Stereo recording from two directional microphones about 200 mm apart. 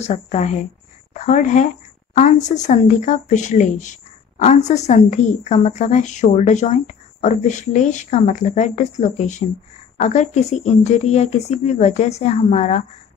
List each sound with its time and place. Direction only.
0.0 s speech: 35° left (ahead or behind)